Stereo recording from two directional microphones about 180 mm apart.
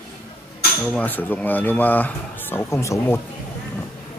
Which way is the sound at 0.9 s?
10° left (ahead or behind).